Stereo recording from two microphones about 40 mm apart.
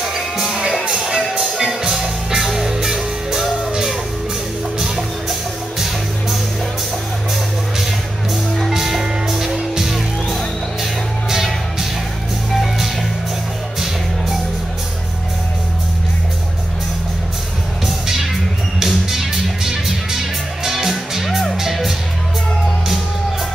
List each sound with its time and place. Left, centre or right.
0.0 s music: centre
0.8 s music: centre
4.7 s music: centre
8.5 s music: centre
18.9 s music: centre